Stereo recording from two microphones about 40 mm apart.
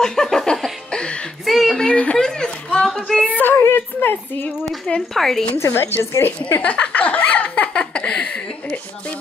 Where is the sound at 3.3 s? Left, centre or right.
Left.